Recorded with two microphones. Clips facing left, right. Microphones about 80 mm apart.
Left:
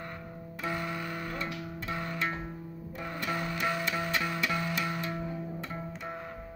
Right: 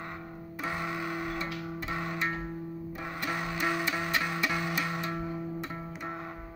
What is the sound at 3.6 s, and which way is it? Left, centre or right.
Music, centre.